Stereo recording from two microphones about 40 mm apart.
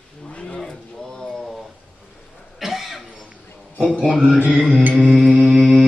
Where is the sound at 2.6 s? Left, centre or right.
Centre.